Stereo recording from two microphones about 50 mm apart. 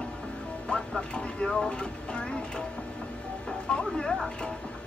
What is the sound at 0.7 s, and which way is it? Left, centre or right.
Vehicle, centre.